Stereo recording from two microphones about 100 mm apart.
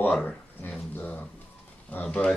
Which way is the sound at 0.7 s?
15° left (ahead or behind).